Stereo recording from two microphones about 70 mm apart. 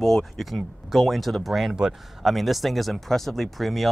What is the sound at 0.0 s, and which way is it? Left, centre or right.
Speech, centre.